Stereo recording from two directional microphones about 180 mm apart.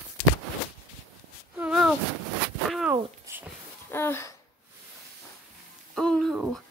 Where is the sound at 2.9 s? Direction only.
15° right (ahead or behind).